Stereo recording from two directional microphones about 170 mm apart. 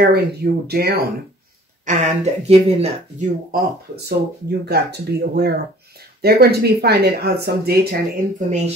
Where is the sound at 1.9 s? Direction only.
45° right (ahead or behind).